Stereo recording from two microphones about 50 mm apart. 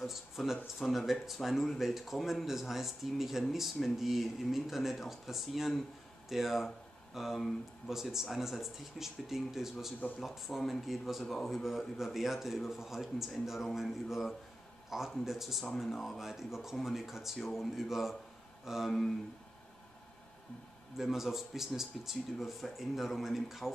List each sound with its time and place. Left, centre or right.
0.0 s a man's voice: centre
18.9 s a man's voice: centre
21.0 s a man's voice: centre